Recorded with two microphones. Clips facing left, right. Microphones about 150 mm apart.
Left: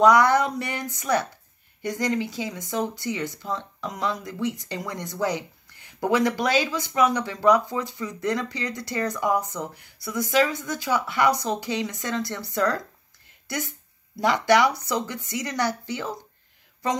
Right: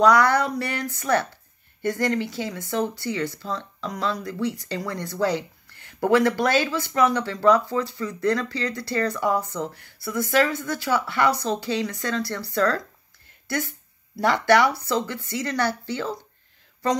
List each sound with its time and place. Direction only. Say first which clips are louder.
0.0 s speech: even; 20° left (ahead or behind)